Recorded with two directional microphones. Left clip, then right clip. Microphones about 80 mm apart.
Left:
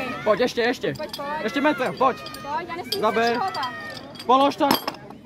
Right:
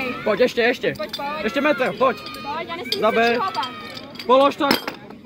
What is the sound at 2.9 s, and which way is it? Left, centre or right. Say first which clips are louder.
Speech: right 3 dB; left.